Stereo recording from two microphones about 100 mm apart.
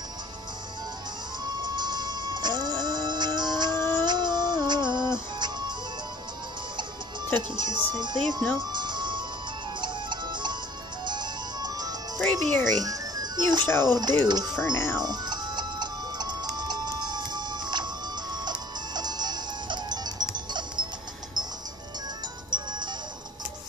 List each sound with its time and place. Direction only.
1.6 s music: 45° right (ahead or behind)
7.3 s speech: 50° right (ahead or behind)
8.5 s ice cream truck: 50° right (ahead or behind)
9.8 s music: 50° right (ahead or behind)
12.2 s music: 15° left (ahead or behind)
12.7 s music: 40° right (ahead or behind)
13.8 s speech: 45° right (ahead or behind)
14.6 s speech: 25° left (ahead or behind)
15.0 s music: 45° right (ahead or behind)
22.5 s music: 45° right (ahead or behind)